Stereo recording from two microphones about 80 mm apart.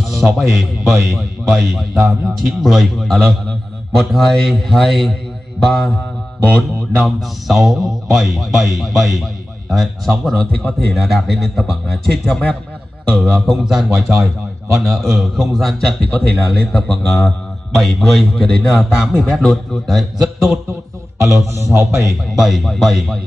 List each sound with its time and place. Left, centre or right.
0.0 s a man's voice: centre
14.1 s a man's voice: right
14.9 s a man's voice: centre
21.2 s a man's voice: right
22.3 s a man's voice: centre